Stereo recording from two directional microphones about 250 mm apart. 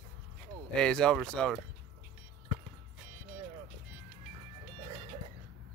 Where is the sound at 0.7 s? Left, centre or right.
Centre.